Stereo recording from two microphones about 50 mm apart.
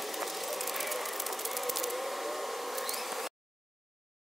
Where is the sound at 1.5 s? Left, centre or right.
Centre.